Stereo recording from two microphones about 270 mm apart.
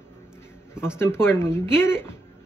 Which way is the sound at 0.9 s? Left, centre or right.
Centre.